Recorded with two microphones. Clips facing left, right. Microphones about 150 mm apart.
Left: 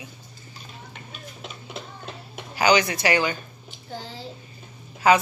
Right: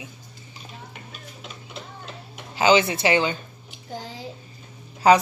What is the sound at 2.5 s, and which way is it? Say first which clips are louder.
Speech: right 2 dB; 25° right (ahead or behind).